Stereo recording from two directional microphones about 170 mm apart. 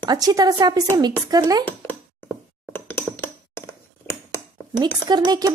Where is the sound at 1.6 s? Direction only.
10° left (ahead or behind).